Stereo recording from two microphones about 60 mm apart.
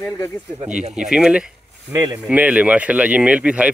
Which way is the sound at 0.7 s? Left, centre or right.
Centre.